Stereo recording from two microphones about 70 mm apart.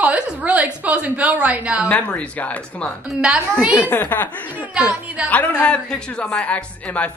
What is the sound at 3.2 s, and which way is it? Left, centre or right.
Speech, centre.